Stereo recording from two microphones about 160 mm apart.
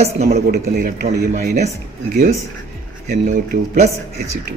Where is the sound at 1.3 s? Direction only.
50° right (ahead or behind).